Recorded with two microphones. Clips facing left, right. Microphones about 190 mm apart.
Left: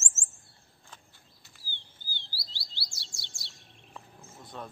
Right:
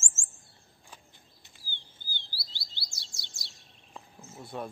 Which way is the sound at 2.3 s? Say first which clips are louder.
Left 1 dB; 35° left (ahead or behind).